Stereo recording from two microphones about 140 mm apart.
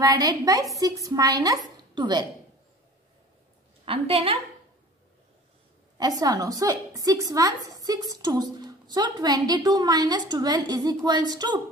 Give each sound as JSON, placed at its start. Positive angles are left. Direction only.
{"t": 0.0, "sound": "a woman's voice", "side_deg": -25}
{"t": 3.8, "sound": "a woman's voice", "side_deg": -40}
{"t": 5.9, "sound": "a woman's voice", "side_deg": -25}